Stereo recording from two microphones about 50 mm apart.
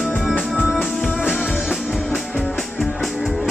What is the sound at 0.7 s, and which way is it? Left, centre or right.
Music, centre.